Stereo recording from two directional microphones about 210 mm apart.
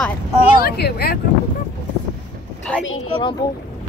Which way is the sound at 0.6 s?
50° left (ahead or behind).